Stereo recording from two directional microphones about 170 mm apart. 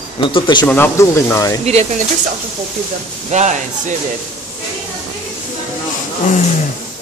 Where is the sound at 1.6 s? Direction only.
40° right (ahead or behind).